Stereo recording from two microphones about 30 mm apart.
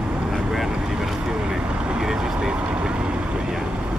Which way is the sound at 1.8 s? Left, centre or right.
Right.